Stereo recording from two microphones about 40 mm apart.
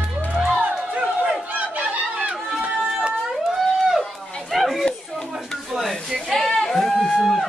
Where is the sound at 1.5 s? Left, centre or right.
Right.